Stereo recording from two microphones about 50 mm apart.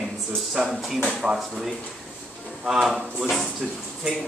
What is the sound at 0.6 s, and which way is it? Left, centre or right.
Speech, centre.